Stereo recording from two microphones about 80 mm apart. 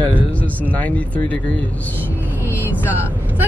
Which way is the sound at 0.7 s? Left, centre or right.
Centre.